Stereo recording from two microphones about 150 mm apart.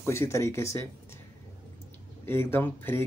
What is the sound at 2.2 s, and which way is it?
Speech, 15° left (ahead or behind).